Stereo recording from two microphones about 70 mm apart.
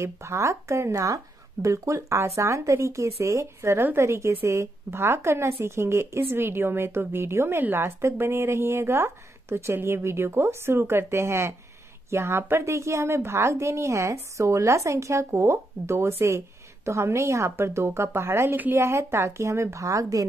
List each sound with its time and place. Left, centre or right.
0.0 s speech: right